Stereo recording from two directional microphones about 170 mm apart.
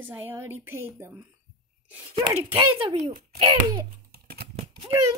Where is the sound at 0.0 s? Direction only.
10° right (ahead or behind).